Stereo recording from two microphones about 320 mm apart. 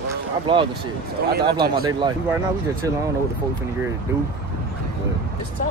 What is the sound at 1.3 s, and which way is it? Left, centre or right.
Speech, right.